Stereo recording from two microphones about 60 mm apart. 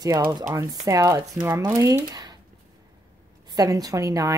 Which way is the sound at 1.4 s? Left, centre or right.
Right.